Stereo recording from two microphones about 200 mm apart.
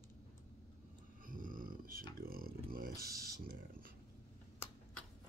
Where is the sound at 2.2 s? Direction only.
45° right (ahead or behind).